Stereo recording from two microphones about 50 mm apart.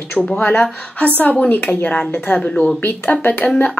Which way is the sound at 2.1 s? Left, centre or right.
Left.